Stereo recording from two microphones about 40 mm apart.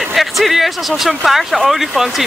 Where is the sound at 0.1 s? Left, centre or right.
Centre.